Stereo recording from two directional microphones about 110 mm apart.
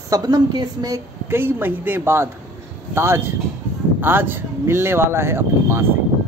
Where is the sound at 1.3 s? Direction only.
20° right (ahead or behind).